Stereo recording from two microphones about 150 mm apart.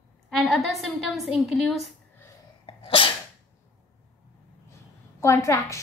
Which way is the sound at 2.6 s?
35° left (ahead or behind).